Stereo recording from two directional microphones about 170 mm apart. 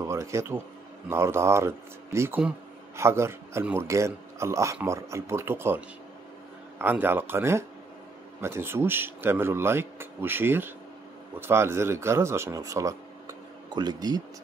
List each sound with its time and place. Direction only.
0.0 s a man's voice: 15° right (ahead or behind)